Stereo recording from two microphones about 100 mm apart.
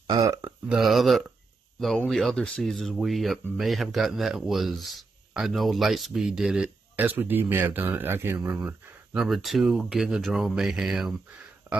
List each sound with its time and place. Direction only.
0.0 s speech: 40° right (ahead or behind)
0.7 s a man's voice: centre (ahead or behind)
7.0 s speech: 20° right (ahead or behind)
9.1 s a man's voice: centre (ahead or behind)